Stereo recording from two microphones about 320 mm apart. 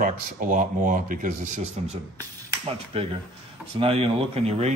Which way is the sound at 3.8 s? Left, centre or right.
Centre.